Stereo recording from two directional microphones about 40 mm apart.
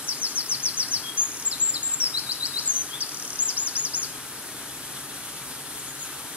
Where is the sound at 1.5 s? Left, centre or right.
Right.